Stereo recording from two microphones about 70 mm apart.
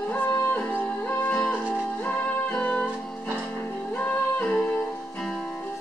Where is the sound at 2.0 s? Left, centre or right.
Centre.